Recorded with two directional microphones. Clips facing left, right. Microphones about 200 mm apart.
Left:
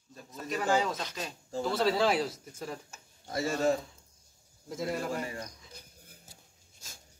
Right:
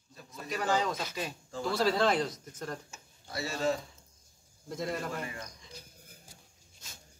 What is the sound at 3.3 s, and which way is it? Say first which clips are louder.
Speech: left 4 dB; 45° left (ahead or behind).